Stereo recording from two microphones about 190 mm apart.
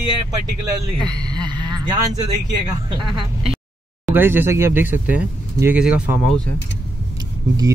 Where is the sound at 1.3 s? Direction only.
20° right (ahead or behind).